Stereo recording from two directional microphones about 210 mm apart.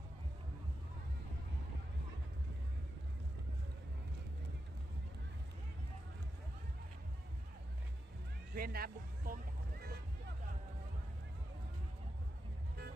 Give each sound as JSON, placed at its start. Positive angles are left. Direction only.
{"t": 8.5, "sound": "music", "side_deg": -45}